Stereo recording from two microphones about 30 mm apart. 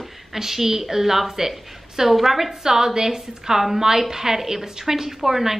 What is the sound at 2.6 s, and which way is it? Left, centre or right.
A woman's voice, centre.